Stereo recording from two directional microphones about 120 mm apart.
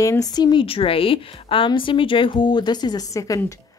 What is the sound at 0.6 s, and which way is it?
Speech, 50° left (ahead or behind).